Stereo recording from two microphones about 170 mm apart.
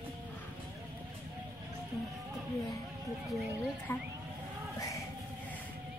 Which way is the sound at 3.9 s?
15° left (ahead or behind).